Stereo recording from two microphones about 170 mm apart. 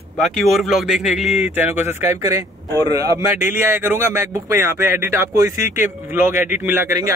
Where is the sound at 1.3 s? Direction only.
40° left (ahead or behind).